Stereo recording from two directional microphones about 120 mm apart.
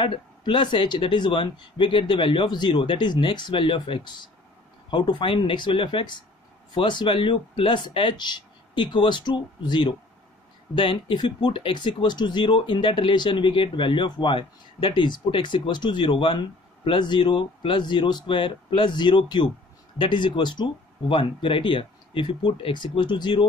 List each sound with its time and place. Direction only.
0.0 s speech: 45° left (ahead or behind)